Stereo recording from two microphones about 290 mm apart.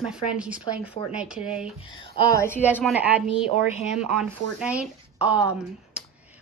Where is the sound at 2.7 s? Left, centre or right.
Centre.